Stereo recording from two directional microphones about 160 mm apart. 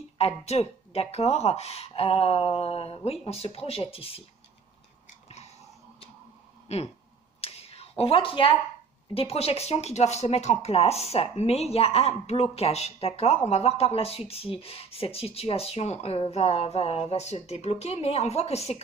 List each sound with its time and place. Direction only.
0.2 s speech: 40° left (ahead or behind)
6.7 s a sound: 45° left (ahead or behind)
8.0 s speech: 35° left (ahead or behind)